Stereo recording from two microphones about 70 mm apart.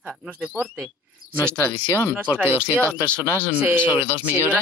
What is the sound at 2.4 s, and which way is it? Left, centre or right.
Speech, left.